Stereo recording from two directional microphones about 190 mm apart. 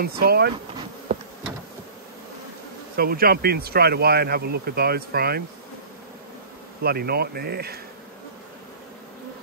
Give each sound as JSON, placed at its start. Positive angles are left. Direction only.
{"t": 0.0, "sound": "speech", "side_deg": -55}
{"t": 3.0, "sound": "speech", "side_deg": -55}
{"t": 6.8, "sound": "speech", "side_deg": -55}